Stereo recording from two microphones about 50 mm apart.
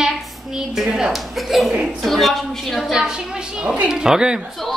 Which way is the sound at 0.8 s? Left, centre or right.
Centre.